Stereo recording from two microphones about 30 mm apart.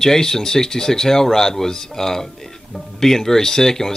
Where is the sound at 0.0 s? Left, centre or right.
Centre.